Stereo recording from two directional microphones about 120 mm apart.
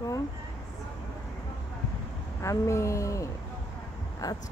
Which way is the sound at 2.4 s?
25° left (ahead or behind).